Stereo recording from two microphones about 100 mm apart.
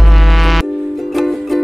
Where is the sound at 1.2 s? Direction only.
Centre (ahead or behind).